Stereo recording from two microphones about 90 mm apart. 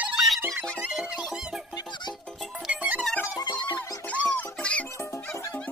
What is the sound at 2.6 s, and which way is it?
Music, 15° right (ahead or behind).